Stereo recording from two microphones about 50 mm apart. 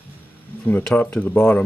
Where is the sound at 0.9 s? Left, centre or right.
Left.